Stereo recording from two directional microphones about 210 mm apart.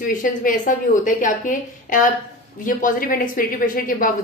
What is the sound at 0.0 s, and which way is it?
A woman's voice, 40° left (ahead or behind).